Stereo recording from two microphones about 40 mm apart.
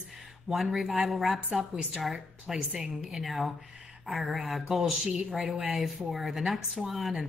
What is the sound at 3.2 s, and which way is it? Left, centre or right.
A woman's voice, centre.